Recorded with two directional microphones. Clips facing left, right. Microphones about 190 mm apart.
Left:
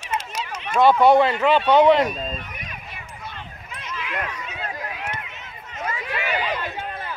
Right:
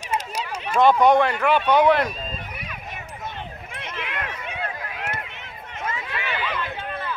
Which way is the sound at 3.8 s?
65° right (ahead or behind).